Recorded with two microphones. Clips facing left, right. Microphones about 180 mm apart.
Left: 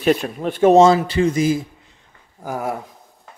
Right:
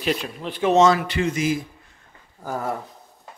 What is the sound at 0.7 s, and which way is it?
Speech, 30° left (ahead or behind).